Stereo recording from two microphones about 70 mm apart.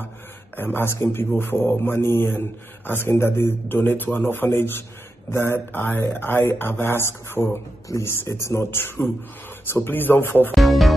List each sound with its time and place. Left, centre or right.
0.6 s a man's voice: left
10.5 s speech: centre